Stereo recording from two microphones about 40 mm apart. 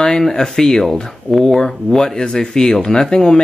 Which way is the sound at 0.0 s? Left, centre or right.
Centre.